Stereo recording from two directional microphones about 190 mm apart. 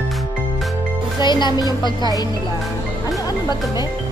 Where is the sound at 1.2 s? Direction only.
25° left (ahead or behind).